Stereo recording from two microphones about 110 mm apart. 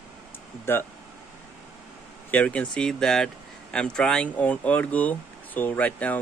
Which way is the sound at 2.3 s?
10° left (ahead or behind).